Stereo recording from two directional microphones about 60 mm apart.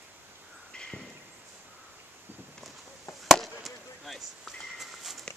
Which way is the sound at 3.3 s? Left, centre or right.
Centre.